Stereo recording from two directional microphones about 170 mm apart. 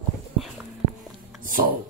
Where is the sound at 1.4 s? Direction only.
55° right (ahead or behind).